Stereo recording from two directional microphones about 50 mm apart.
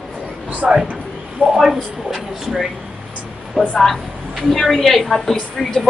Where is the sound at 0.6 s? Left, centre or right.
Centre.